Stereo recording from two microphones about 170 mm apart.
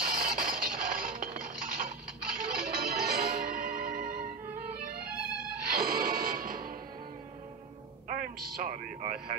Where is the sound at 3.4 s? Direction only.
60° right (ahead or behind).